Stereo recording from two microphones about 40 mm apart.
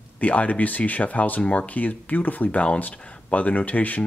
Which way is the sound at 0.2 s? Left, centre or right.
Left.